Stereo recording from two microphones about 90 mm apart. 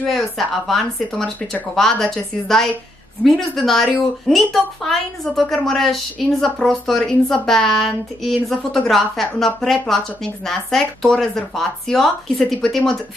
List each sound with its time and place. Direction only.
0.0 s a woman's voice: centre (ahead or behind)